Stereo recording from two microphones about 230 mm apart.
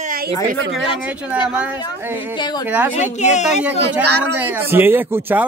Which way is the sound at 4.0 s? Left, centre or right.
Right.